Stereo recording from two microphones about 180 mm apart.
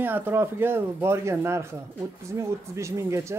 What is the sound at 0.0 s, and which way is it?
Speech, 10° right (ahead or behind).